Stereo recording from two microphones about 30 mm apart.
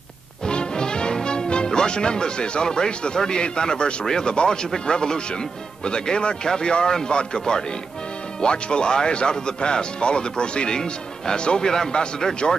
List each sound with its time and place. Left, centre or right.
0.5 s music: left
4.0 s a man's voice: left